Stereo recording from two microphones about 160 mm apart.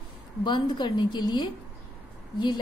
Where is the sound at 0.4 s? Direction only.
30° left (ahead or behind).